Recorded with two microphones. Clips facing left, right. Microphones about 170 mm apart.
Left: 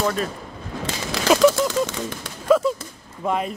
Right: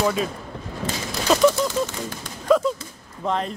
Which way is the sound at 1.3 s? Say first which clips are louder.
Left 2 dB; 10° left (ahead or behind).